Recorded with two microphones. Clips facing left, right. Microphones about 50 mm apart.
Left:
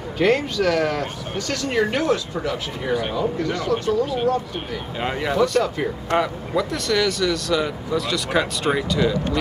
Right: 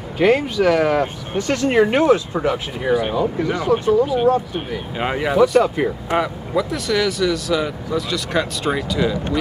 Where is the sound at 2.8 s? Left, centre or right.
Centre.